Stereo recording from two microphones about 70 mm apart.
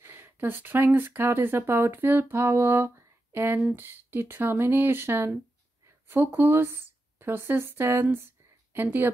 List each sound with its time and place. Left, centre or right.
0.0 s speech: right